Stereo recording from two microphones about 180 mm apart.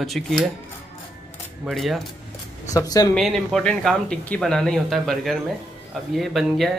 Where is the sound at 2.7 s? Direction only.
20° left (ahead or behind).